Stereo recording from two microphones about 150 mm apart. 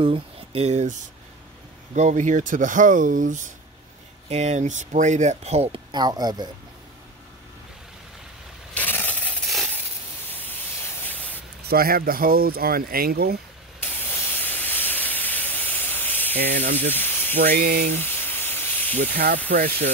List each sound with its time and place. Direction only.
0.0 s speech: 40° right (ahead or behind)
2.0 s speech: 55° right (ahead or behind)
5.9 s speech: 30° right (ahead or behind)
8.7 s coin: 10° left (ahead or behind)
11.6 s speech: 85° right
13.7 s spray: 15° left (ahead or behind)
16.9 s hiss: 15° left (ahead or behind)
17.4 s speech: 85° right
17.9 s a sound: 15° left (ahead or behind)
19.1 s speech: 90° right